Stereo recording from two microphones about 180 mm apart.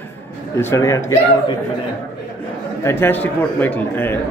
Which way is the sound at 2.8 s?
15° left (ahead or behind).